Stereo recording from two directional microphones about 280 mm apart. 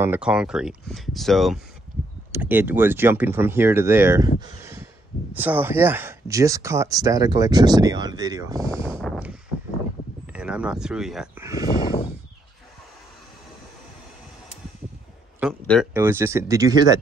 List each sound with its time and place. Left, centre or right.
0.0 s speech: centre
8.5 s speech: centre
10.3 s speech: centre
11.8 s a sound: centre
15.6 s speech: centre
15.9 s speech: centre